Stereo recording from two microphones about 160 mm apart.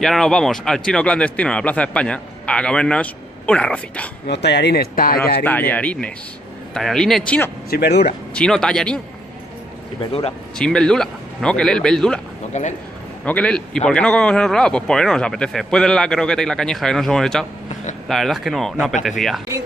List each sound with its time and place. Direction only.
0.0 s speech: centre (ahead or behind)
4.3 s speech: 90° left; by 5.4 s 70° left (ahead or behind)
5.4 s a man's voice: 10° left (ahead or behind)
7.7 s speech: 90° left
8.4 s a man's voice: 5° left (ahead or behind)
10.6 s a man's voice: 5° left (ahead or behind)
12.6 s a man's voice: 45° left (ahead or behind)
13.2 s a man's voice: 10° left (ahead or behind)